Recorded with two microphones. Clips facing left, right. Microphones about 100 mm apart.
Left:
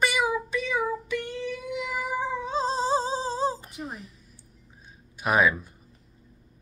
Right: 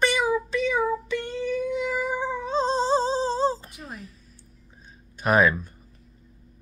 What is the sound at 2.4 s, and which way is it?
Female singing, 5° left (ahead or behind).